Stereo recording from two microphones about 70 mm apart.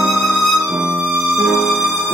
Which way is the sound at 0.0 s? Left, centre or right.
Centre.